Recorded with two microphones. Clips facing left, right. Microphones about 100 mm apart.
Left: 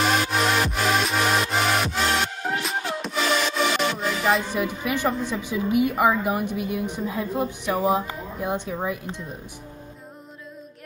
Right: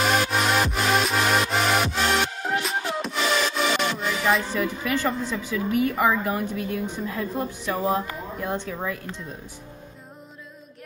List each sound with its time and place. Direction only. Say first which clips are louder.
0.0 s music: even; centre (ahead or behind)
4.5 s a woman's voice: even; 15° left (ahead or behind)